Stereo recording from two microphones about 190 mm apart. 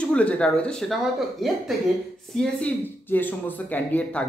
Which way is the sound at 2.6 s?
10° left (ahead or behind).